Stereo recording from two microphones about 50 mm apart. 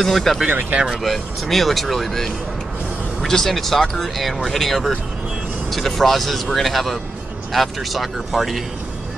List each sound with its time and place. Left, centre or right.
0.0 s speech: centre
0.5 s speech: right
0.8 s speech: centre